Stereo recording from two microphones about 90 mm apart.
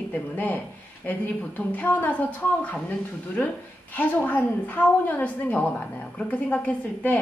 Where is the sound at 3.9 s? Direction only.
20° left (ahead or behind).